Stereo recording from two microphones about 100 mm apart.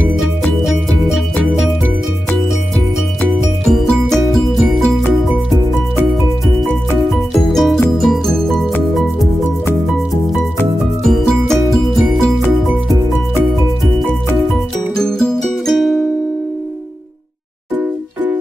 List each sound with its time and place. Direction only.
3.6 s music: 5° left (ahead or behind)
7.3 s music: 5° left (ahead or behind)
11.1 s music: 5° left (ahead or behind)
15.0 s music: 5° left (ahead or behind)